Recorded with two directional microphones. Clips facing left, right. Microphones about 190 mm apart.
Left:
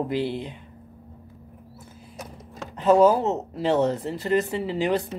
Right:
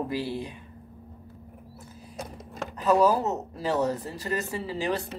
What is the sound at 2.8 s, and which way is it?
Speech, 25° left (ahead or behind).